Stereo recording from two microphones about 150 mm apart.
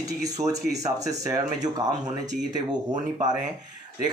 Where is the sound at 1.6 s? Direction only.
25° right (ahead or behind).